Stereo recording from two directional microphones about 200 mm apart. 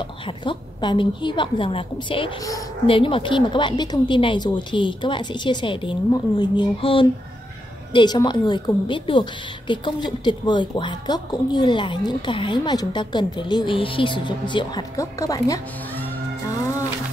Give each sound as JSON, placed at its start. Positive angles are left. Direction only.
{"t": 0.4, "sound": "a woman's voice", "side_deg": 25}